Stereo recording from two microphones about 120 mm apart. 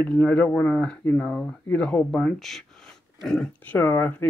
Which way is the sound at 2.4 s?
5° left (ahead or behind).